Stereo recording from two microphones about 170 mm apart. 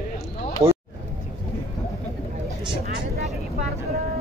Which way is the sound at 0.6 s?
15° right (ahead or behind).